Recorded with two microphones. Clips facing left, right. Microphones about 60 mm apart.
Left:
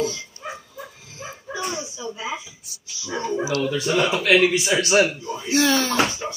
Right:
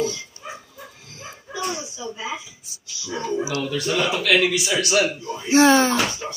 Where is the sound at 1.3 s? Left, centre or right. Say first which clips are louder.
Even; centre.